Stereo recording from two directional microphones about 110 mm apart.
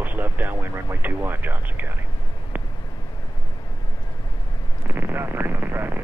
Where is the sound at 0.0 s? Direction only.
15° right (ahead or behind).